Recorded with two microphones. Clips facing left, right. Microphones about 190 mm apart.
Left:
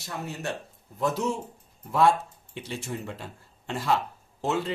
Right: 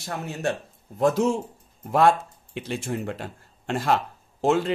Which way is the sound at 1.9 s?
60° right (ahead or behind).